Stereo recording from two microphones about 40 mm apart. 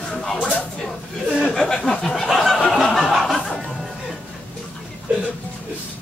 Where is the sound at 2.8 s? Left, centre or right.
Centre.